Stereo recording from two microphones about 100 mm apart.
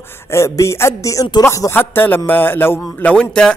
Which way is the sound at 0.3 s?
30° left (ahead or behind).